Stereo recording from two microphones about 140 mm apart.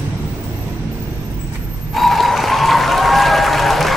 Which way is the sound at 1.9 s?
Centre (ahead or behind).